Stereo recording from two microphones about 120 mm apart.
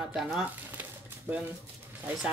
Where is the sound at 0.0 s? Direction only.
5° right (ahead or behind).